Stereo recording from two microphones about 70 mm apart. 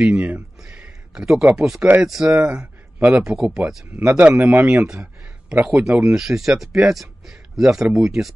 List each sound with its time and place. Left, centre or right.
0.1 s speech: right
0.6 s a sound: centre
1.4 s a man's voice: centre